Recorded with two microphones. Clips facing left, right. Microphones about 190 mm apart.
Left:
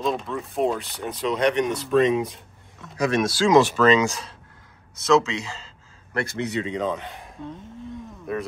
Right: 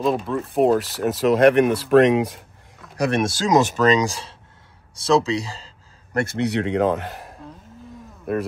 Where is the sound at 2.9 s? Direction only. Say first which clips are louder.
Right 1 dB; 60° right (ahead or behind); by 4.3 s 30° right (ahead or behind).